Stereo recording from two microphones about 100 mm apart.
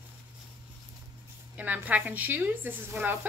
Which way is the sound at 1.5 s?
15° right (ahead or behind).